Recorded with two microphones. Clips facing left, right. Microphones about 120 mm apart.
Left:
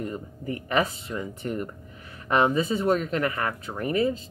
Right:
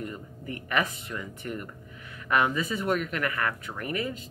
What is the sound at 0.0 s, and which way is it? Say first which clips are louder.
Speech: left 5 dB; 30° left (ahead or behind).